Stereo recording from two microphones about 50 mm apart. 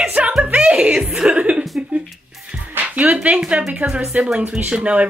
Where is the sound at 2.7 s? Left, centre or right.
Right.